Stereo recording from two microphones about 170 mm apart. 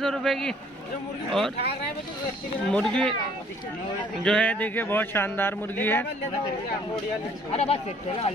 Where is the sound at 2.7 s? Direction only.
5° left (ahead or behind).